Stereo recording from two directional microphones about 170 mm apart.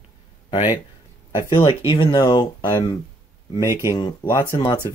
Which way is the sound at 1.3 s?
25° left (ahead or behind).